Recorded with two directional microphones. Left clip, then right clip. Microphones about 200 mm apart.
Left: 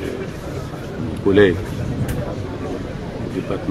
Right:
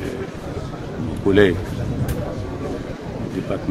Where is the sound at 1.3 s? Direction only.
25° right (ahead or behind).